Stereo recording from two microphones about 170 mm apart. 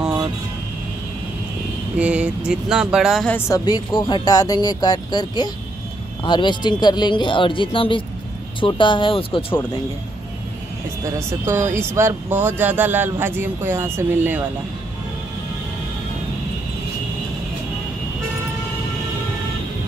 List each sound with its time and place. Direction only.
2.0 s speech: 5° right (ahead or behind)
3.3 s speech: 20° left (ahead or behind)
11.1 s speech: 15° right (ahead or behind)